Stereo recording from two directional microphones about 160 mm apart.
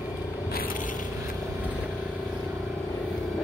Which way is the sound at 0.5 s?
65° left (ahead or behind).